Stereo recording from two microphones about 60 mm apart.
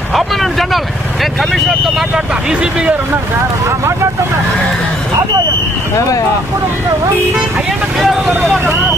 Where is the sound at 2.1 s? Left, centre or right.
Centre.